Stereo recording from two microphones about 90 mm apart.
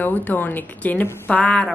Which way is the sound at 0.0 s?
20° left (ahead or behind).